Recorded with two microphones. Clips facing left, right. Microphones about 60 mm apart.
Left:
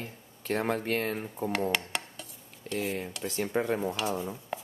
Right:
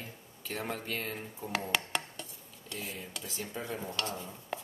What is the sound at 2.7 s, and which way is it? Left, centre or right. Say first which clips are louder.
Speech: left 10 dB; left.